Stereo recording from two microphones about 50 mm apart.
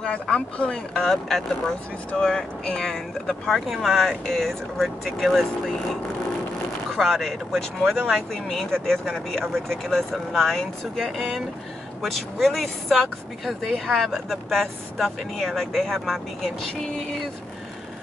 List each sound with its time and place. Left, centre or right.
0.0 s speech: centre
1.0 s speech: centre
7.0 s speech: centre